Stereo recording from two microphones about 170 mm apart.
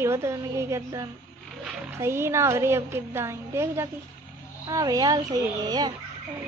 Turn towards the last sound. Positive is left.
turn(degrees=-25)  # may be behind; listen again after turning